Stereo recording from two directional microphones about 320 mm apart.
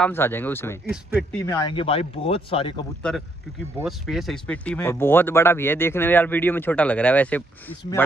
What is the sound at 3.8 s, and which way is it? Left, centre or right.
Speech, centre.